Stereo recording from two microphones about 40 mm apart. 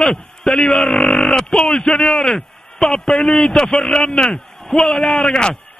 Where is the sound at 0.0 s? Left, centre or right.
Centre.